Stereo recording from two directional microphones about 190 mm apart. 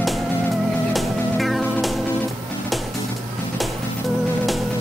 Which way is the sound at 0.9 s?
Centre (ahead or behind).